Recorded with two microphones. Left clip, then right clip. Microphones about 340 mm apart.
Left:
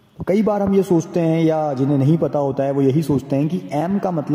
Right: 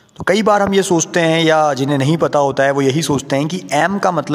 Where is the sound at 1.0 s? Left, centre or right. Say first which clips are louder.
Right 5 dB; right.